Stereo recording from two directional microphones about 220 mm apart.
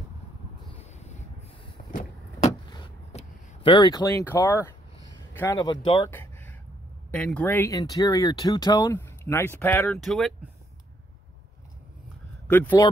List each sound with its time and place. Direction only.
0.7 s vehicle: 30° left (ahead or behind)
2.7 s a sound: 25° left (ahead or behind)
5.3 s speech: 10° left (ahead or behind)
12.4 s speech: 10° left (ahead or behind)